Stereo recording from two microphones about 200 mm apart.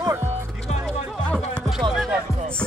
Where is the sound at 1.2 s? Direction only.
5° left (ahead or behind).